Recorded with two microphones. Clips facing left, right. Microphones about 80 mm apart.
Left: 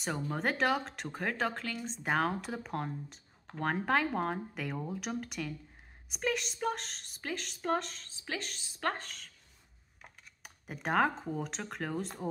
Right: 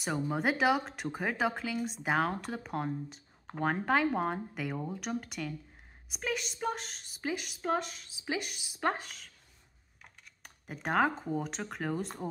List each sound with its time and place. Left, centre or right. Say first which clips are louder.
0.3 s speech: right 2 dB; centre